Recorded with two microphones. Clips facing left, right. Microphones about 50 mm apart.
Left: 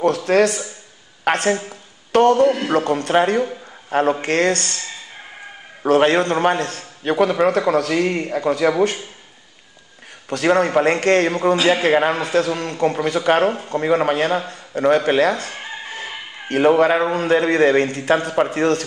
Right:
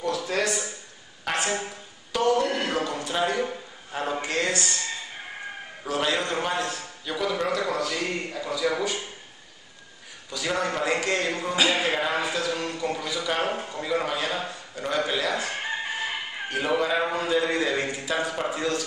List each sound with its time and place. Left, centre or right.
0.0 s a man's voice: left
1.7 s a sound: left
2.7 s a man's voice: left
5.9 s a man's voice: left
10.3 s a man's voice: left
15.3 s speech: centre
16.4 s a man's voice: left